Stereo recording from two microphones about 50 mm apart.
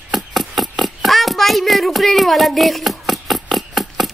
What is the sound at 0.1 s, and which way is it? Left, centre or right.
Hands, centre.